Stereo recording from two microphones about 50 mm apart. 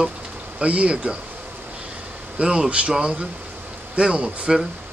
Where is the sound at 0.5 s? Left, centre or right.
Right.